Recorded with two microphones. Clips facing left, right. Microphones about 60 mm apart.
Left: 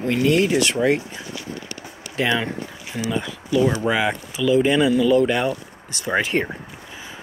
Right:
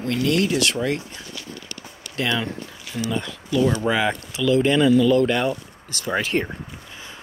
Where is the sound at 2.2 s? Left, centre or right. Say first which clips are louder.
Left 3 dB; left.